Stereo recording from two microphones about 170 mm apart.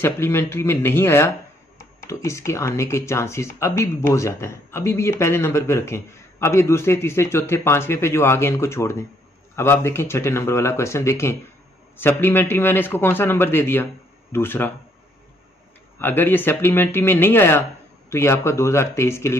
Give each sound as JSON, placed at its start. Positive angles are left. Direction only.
{"t": 0.0, "sound": "speech", "side_deg": 15}
{"t": 16.0, "sound": "speech", "side_deg": 10}